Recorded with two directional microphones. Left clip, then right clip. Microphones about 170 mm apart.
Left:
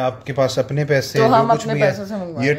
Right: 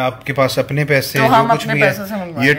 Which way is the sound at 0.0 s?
20° left (ahead or behind).